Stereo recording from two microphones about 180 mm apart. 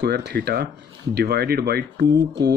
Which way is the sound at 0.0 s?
65° right (ahead or behind).